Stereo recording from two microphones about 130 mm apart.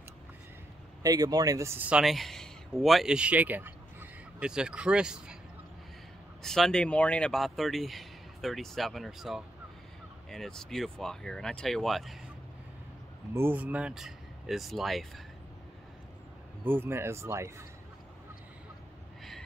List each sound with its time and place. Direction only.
1.0 s speech: 30° right (ahead or behind)
1.9 s speech: 5° right (ahead or behind)
6.4 s speech: 5° left (ahead or behind)
13.3 s speech: 15° right (ahead or behind); by 15.2 s centre (ahead or behind)
16.6 s speech: 15° right (ahead or behind)